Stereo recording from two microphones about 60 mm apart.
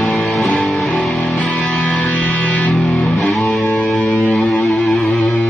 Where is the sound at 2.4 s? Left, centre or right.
Left.